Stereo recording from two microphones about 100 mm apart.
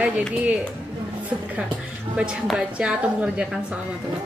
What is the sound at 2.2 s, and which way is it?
A woman's voice, 10° right (ahead or behind).